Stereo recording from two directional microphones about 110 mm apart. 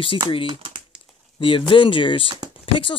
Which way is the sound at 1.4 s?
50° left (ahead or behind).